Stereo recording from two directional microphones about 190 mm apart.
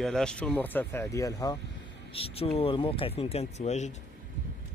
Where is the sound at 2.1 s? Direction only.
30° left (ahead or behind).